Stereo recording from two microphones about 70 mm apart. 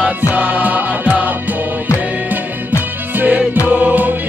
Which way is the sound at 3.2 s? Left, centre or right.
Right.